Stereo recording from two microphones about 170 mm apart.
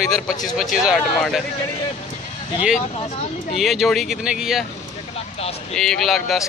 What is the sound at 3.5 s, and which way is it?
Speech, centre (ahead or behind).